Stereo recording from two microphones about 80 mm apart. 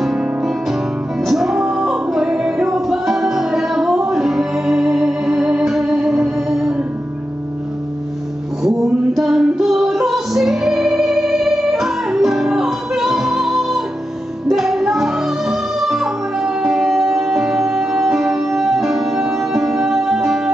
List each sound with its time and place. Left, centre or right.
0.0 s music: centre
8.6 s music: centre